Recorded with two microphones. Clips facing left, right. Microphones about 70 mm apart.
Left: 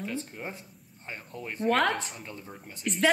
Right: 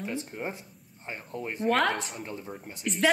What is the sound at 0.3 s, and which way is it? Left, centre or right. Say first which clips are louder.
Speech: right 4 dB; centre.